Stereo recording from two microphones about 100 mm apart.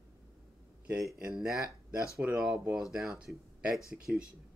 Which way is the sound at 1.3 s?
5° right (ahead or behind).